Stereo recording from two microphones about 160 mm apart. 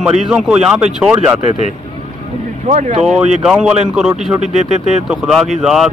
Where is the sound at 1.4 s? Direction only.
50° left (ahead or behind).